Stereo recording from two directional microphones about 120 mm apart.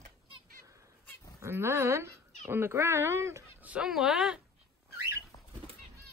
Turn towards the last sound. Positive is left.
turn(degrees=30)  # may be behind; listen again after turning